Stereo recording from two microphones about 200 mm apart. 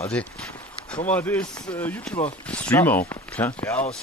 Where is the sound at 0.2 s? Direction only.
5° left (ahead or behind).